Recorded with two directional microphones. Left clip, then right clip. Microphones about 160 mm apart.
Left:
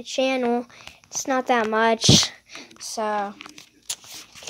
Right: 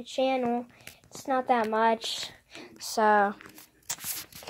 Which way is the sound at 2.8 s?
30° right (ahead or behind).